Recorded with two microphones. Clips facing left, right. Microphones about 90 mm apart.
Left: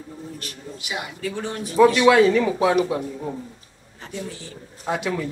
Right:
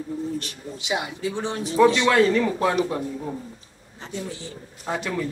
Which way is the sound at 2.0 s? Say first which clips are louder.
Left 3 dB; 5° left (ahead or behind).